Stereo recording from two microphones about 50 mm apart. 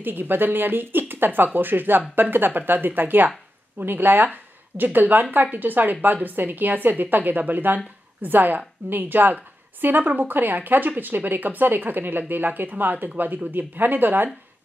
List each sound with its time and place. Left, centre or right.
0.0 s a woman's voice: right